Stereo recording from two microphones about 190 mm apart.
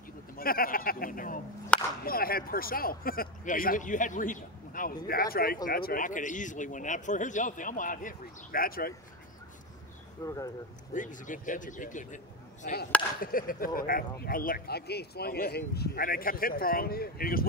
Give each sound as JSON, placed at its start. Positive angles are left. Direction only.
{"t": 0.4, "sound": "speech", "side_deg": 50}
{"t": 1.7, "sound": "whip", "side_deg": 5}
{"t": 2.0, "sound": "speech", "side_deg": 50}
{"t": 10.2, "sound": "speech", "side_deg": 15}
{"t": 10.9, "sound": "speech", "side_deg": 45}